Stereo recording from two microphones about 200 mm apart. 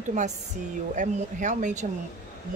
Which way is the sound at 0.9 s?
40° right (ahead or behind).